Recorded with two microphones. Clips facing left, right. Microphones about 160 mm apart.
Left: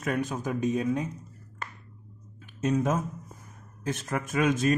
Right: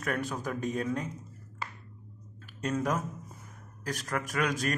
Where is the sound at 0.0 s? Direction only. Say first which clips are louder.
Left 3 dB; 20° left (ahead or behind).